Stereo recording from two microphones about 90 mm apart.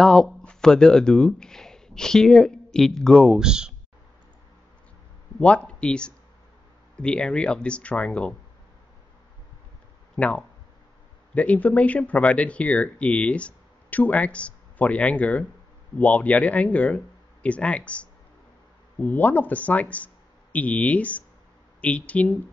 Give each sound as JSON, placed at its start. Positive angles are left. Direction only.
{"t": 0.0, "sound": "speech", "side_deg": 5}
{"t": 3.3, "sound": "speech", "side_deg": -10}
{"t": 5.4, "sound": "speech", "side_deg": 15}
{"t": 10.1, "sound": "speech", "side_deg": 15}